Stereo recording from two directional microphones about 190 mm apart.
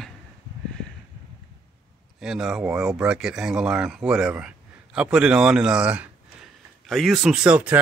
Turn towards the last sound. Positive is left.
turn(degrees=-5)  # may be behind; listen again after turning